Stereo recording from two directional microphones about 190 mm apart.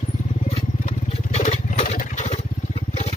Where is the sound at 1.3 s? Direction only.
40° left (ahead or behind).